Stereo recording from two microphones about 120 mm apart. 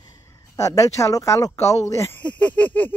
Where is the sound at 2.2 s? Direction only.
10° left (ahead or behind).